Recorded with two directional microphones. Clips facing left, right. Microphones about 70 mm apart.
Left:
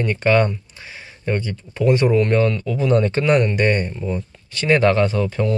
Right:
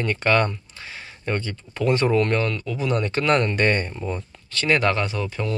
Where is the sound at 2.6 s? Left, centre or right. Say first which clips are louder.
Left 6 dB; left.